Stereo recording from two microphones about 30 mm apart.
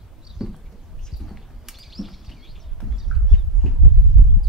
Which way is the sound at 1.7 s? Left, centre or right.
Centre.